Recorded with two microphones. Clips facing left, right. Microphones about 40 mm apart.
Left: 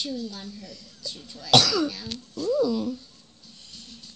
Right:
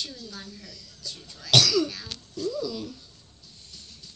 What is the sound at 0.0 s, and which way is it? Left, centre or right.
A woman's voice, left.